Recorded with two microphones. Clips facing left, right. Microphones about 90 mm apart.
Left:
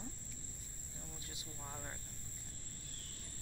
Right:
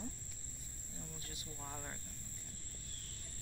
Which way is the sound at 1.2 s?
20° left (ahead or behind).